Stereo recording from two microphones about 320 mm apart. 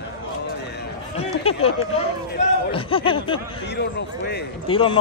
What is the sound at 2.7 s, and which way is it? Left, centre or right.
Speech, centre.